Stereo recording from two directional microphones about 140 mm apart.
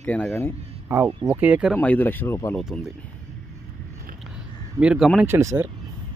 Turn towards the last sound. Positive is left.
turn(degrees=-20)  # may be behind; listen again after turning